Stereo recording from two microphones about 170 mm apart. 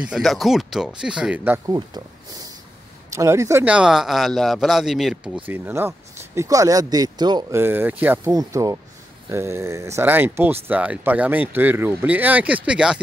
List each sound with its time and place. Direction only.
0.0 s speech: centre (ahead or behind)
3.1 s speech: 15° right (ahead or behind)
7.6 s speech: 10° right (ahead or behind)